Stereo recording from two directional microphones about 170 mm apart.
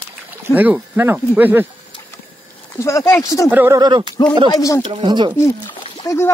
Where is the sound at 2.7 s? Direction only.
15° left (ahead or behind).